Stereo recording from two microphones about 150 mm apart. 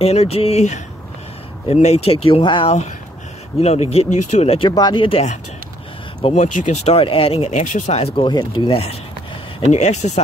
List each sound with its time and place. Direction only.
0.0 s speech: 40° left (ahead or behind)
4.6 s speech: 30° left (ahead or behind)
6.3 s speech: 50° left (ahead or behind)
9.7 s speech: 50° left (ahead or behind)